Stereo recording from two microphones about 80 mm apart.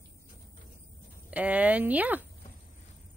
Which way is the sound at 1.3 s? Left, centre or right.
Centre.